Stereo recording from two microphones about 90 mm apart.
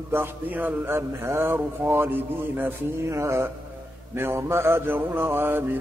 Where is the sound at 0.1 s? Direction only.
20° right (ahead or behind).